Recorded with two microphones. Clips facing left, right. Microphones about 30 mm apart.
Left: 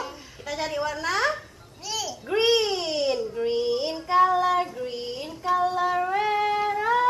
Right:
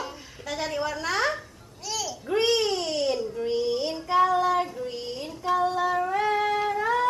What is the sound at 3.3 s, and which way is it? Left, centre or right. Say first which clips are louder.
Child singing: left 2 dB; centre.